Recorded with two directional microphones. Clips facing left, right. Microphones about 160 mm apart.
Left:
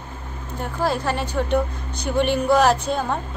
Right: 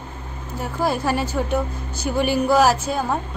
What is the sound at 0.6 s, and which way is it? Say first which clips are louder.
A woman's voice: right 1 dB; 10° right (ahead or behind).